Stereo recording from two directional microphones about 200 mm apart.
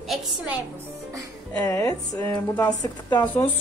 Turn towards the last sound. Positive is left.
turn(degrees=20)  # may be behind; listen again after turning